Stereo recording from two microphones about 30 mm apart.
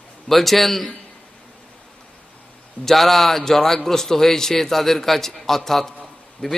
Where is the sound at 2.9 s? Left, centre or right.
Centre.